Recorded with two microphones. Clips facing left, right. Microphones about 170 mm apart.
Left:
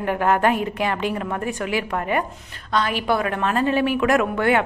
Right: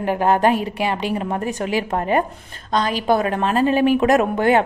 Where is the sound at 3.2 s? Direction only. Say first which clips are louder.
Right 3 dB; 30° right (ahead or behind).